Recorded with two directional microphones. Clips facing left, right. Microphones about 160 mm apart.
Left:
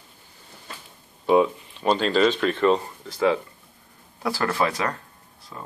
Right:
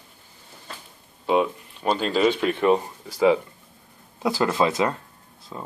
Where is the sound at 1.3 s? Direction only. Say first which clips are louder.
Left 3 dB; 5° right (ahead or behind).